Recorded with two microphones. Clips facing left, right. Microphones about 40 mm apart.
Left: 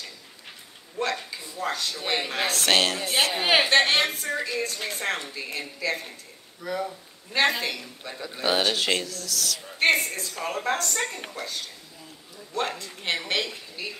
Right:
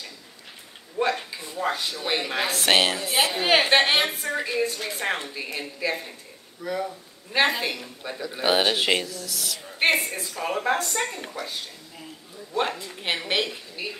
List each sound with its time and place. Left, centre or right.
1.6 s speech: centre
3.6 s speech: centre
7.3 s speech: centre
12.5 s speech: centre